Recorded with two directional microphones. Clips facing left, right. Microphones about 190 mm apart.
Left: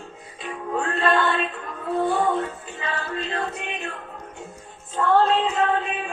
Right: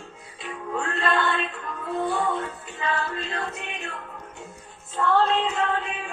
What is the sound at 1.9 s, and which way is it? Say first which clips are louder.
Speech: left 4 dB; 40° left (ahead or behind).